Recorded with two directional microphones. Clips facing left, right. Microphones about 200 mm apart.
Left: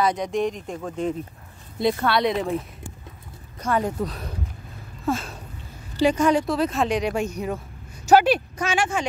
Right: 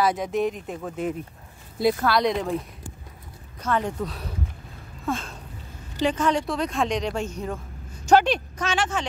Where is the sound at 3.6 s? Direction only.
10° left (ahead or behind).